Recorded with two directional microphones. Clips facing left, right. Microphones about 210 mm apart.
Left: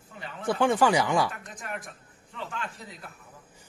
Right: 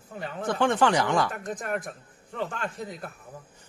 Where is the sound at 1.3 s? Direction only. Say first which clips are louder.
Right 7 dB; 45° right (ahead or behind).